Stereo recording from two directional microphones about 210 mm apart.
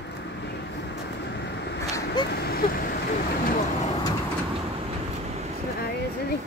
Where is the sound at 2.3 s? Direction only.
45° left (ahead or behind).